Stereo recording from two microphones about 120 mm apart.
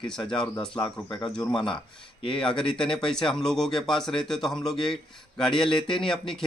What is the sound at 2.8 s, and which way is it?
A man's voice, 5° left (ahead or behind).